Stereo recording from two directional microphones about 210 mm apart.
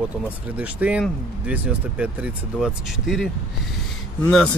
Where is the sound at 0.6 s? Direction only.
5° right (ahead or behind).